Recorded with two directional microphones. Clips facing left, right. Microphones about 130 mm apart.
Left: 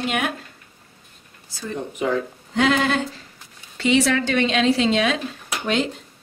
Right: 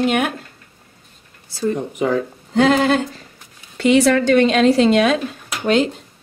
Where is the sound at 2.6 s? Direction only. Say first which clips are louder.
Right 5 dB; 40° right (ahead or behind).